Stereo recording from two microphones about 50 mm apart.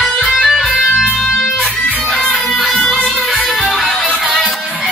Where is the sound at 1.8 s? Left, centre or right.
Left.